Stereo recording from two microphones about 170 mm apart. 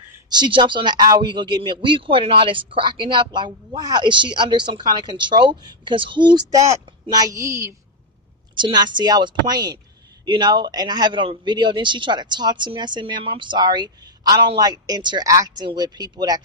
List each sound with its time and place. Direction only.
0.3 s speech: 25° right (ahead or behind)
8.5 s speech: 25° right (ahead or behind)